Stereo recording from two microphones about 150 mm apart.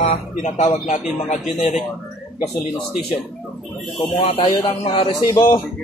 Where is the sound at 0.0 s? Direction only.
50° left (ahead or behind).